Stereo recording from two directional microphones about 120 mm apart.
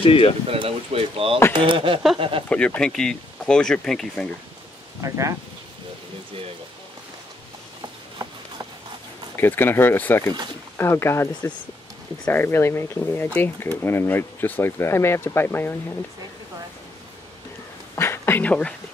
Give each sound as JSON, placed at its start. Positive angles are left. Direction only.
{"t": 0.0, "sound": "speech", "side_deg": 50}
{"t": 0.5, "sound": "speech", "side_deg": -55}
{"t": 2.5, "sound": "speech", "side_deg": 10}
{"t": 5.0, "sound": "speech", "side_deg": -25}
{"t": 9.4, "sound": "speech", "side_deg": 15}
{"t": 17.9, "sound": "speech", "side_deg": 20}